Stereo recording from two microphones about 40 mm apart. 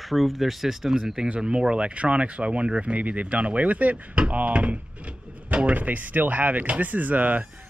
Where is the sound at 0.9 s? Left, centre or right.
Centre.